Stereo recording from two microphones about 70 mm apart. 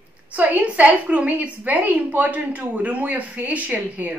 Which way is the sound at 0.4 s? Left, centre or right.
Right.